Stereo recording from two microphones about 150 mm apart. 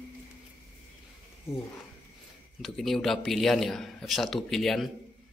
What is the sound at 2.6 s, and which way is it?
A man's voice, centre (ahead or behind).